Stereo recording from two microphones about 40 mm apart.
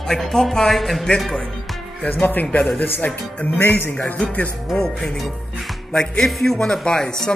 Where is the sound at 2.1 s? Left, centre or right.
Left.